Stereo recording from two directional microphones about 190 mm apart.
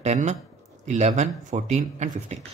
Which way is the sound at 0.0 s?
35° right (ahead or behind).